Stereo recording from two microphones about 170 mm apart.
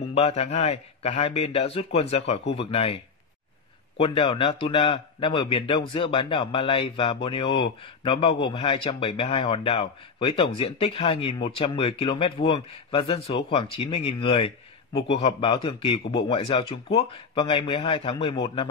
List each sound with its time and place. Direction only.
0.1 s a man's voice: 40° left (ahead or behind)
4.0 s a man's voice: 30° left (ahead or behind)